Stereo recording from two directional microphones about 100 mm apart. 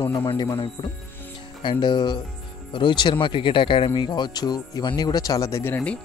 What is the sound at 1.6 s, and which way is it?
Speech, 45° left (ahead or behind).